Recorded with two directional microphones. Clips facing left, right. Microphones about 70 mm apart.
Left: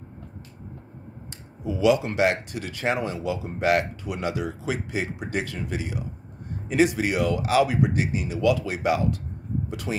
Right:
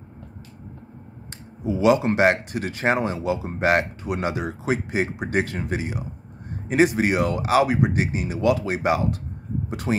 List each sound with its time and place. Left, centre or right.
1.6 s speech: right